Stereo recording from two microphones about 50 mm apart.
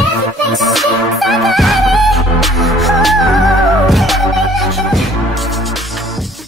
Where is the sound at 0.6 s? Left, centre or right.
Centre.